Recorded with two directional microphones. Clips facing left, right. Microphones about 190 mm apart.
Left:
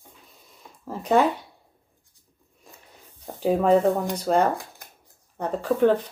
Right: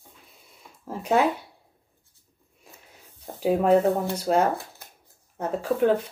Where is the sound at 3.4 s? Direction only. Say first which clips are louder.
Even; 5° right (ahead or behind).